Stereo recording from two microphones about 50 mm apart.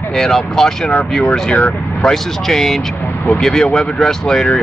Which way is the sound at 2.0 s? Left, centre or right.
Centre.